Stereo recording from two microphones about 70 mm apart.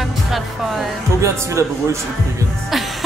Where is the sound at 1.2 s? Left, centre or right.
Right.